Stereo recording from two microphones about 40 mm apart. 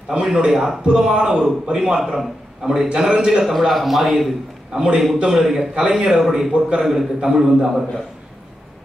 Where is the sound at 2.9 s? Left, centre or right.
Right.